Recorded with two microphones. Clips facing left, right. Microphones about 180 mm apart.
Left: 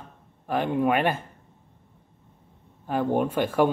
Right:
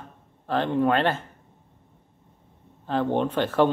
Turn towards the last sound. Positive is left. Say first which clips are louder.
# right 1 dB
turn(degrees=10)  # may be behind; listen again after turning